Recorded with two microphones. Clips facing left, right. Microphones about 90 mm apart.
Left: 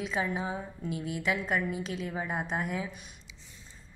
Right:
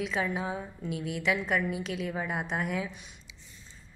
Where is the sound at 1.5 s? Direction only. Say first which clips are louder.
Right 1 dB; 40° left (ahead or behind).